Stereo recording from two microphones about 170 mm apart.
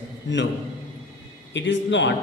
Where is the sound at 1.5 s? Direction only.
90° left.